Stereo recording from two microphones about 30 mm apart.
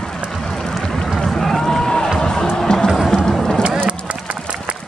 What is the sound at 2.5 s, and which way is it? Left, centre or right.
Music, centre.